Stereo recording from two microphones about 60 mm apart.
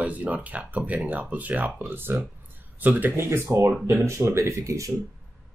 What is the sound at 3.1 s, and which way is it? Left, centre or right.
Speech, right.